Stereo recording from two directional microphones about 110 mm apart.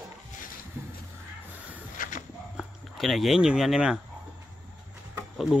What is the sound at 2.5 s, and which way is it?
Speech, centre (ahead or behind).